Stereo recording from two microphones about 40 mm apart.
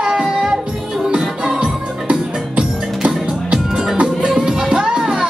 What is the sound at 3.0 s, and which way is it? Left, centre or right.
Music, right.